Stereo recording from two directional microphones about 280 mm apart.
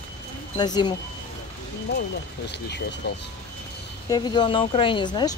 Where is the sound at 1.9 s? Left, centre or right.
Left.